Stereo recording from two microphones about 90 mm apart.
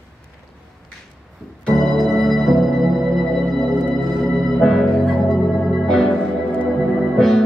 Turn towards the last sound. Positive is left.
turn(degrees=5)  # may be behind; listen again after turning